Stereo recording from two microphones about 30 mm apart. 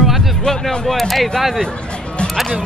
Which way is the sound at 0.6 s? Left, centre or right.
Centre.